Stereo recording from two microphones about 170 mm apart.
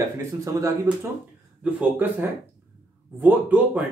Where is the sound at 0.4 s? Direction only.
20° right (ahead or behind).